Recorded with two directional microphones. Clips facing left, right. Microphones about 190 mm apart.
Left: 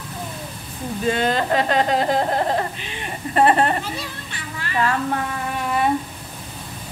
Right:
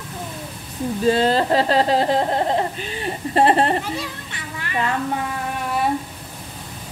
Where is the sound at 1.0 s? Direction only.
35° right (ahead or behind).